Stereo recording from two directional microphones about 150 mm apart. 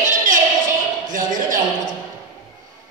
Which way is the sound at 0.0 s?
60° right (ahead or behind).